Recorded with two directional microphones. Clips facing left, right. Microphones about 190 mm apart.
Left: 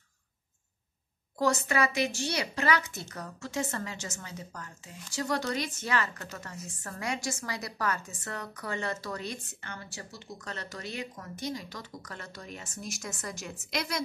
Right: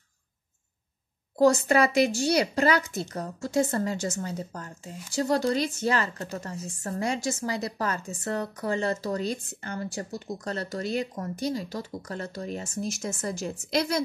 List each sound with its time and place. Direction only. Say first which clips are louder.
1.7 s speech: right 7 dB; 35° right (ahead or behind)